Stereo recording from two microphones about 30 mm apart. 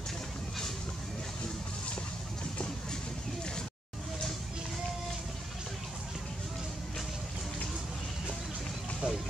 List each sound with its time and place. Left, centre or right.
9.0 s speech: right